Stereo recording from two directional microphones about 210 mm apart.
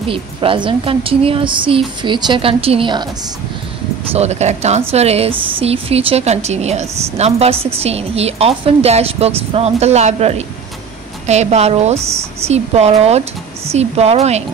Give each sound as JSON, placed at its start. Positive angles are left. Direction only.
{"t": 0.1, "sound": "speech", "side_deg": -25}
{"t": 4.1, "sound": "a woman's voice", "side_deg": -30}
{"t": 12.0, "sound": "speech", "side_deg": -15}
{"t": 12.4, "sound": "a woman's voice", "side_deg": -30}